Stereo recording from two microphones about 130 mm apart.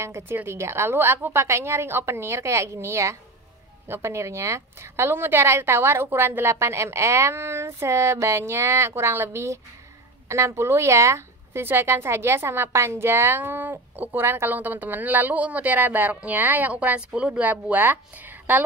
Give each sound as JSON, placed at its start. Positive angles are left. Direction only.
{"t": 0.0, "sound": "a woman's voice", "side_deg": -20}